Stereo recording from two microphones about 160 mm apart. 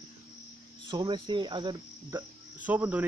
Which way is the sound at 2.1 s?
10° right (ahead or behind).